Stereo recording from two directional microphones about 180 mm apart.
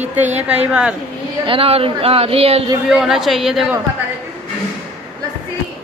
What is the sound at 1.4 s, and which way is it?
Speech, 30° right (ahead or behind).